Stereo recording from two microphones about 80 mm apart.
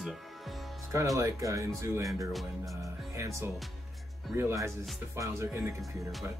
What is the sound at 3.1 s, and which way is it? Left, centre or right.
Speech, right.